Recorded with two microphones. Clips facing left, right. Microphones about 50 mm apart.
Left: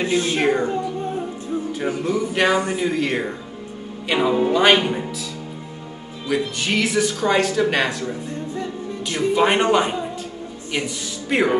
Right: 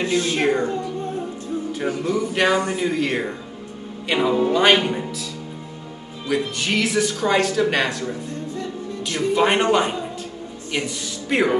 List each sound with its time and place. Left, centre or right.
0.0 s a woman's voice: centre
0.4 s speech: centre
0.7 s music: centre
1.7 s speech: centre
6.2 s speech: centre
9.3 s speech: centre